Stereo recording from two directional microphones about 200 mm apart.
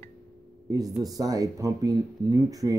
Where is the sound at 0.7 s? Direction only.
20° right (ahead or behind).